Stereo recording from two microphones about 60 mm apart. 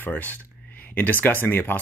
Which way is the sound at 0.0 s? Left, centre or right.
Left.